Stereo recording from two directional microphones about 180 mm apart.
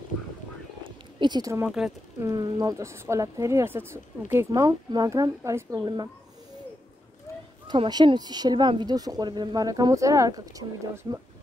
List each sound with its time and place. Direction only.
1.2 s speech: 20° right (ahead or behind)
1.6 s speech: 5° right (ahead or behind)
2.2 s speech: 20° right (ahead or behind)
7.6 s speech: 25° right (ahead or behind)